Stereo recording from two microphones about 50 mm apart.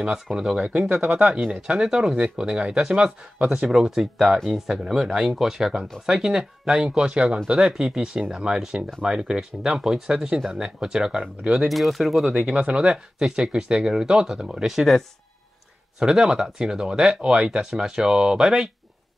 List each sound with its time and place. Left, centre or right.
0.1 s speech: centre
1.0 s speech: right
1.7 s speech: centre
11.7 s speech: centre
12.4 s speech: centre